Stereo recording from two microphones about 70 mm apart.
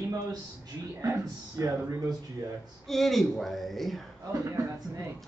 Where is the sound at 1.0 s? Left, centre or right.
Right.